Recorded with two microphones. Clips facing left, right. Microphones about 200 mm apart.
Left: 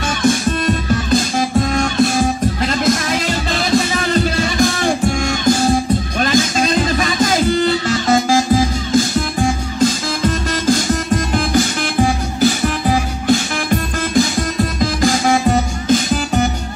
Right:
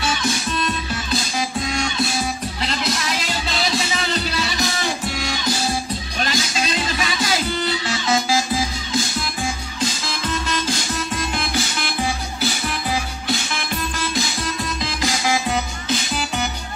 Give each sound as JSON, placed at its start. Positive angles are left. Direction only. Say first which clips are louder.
{"t": 0.0, "sound": "music", "louder": "left 8 dB", "side_deg": 50}